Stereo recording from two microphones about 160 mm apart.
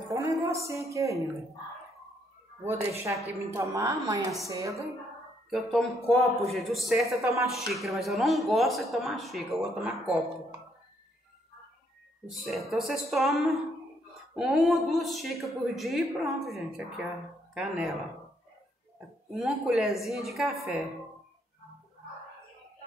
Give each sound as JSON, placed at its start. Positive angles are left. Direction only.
{"t": 0.1, "sound": "a woman's voice", "side_deg": -20}
{"t": 3.3, "sound": "speech", "side_deg": -15}
{"t": 5.5, "sound": "speech", "side_deg": 0}
{"t": 12.3, "sound": "speech", "side_deg": 0}
{"t": 19.3, "sound": "speech", "side_deg": -5}